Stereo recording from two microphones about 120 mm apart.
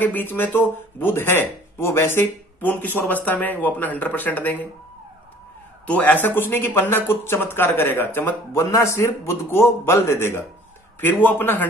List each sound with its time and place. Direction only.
0.0 s speech: 15° left (ahead or behind)
5.9 s speech: 15° left (ahead or behind)